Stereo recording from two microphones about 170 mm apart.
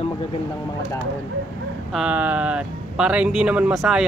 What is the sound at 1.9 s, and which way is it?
Speech, 5° right (ahead or behind).